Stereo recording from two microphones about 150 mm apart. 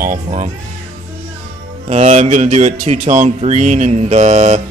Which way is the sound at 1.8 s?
50° right (ahead or behind).